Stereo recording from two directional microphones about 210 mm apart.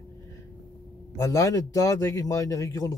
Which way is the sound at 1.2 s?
15° left (ahead or behind).